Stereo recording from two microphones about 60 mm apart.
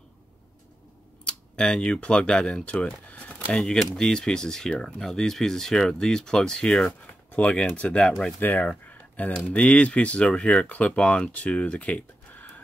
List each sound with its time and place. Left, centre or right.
1.2 s speech: centre
7.3 s speech: left